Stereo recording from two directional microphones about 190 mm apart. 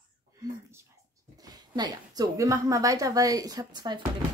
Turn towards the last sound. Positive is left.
turn(degrees=-20)  # may be behind; listen again after turning